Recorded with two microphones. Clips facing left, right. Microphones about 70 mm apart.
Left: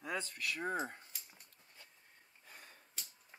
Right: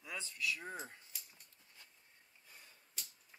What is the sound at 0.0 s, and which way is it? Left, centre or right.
Speech, left.